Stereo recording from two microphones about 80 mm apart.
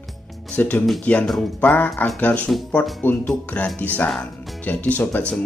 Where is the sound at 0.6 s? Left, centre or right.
Left.